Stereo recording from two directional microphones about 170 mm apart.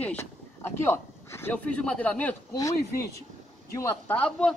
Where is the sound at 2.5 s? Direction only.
20° left (ahead or behind).